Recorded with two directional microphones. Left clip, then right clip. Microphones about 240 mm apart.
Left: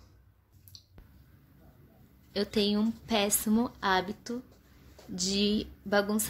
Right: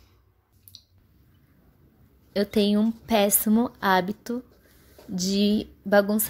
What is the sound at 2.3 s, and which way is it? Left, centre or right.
A woman's voice, right.